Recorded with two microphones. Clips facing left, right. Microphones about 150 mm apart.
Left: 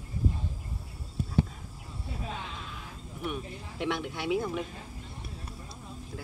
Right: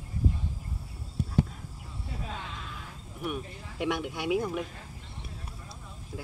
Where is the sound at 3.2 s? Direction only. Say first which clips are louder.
Right 1 dB; 10° right (ahead or behind).